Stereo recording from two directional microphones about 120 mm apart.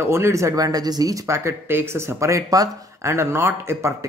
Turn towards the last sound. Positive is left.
turn(degrees=-20)  # may be behind; listen again after turning